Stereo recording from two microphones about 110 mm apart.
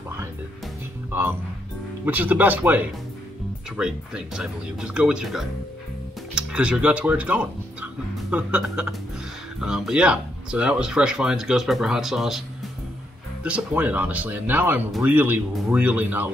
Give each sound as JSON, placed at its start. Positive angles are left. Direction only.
{"t": 2.0, "sound": "speech", "side_deg": -15}